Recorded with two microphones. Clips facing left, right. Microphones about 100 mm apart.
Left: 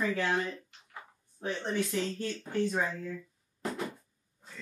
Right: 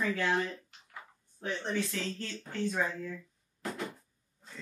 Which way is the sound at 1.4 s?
20° left (ahead or behind).